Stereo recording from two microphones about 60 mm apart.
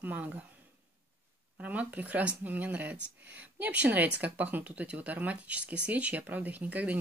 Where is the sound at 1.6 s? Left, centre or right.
Right.